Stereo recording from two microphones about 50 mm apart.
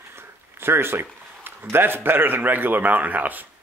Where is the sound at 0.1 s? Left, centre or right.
Right.